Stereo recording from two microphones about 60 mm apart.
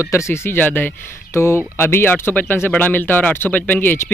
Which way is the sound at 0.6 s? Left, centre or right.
Left.